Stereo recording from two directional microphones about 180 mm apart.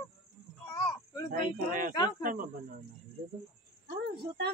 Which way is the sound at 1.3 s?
50° right (ahead or behind).